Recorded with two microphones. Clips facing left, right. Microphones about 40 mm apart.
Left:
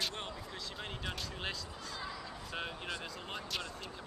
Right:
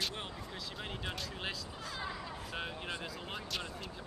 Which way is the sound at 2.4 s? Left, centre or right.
Centre.